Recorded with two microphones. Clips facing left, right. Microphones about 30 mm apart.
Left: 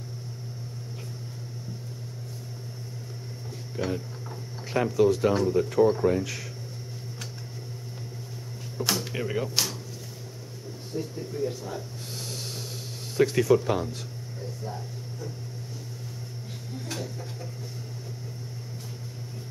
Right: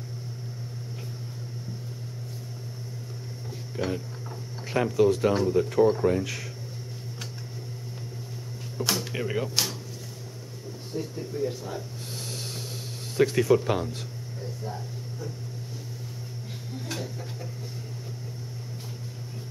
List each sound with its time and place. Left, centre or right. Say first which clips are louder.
3.7 s speech: even; centre
9.0 s speech: even; centre
11.0 s speech: even; centre
14.6 s a sound: right 1 dB; centre
16.8 s tick-tock: even; centre